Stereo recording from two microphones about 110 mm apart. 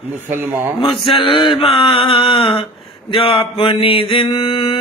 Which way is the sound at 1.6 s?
55° left (ahead or behind).